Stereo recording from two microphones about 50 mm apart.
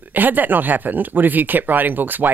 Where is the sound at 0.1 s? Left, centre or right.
Right.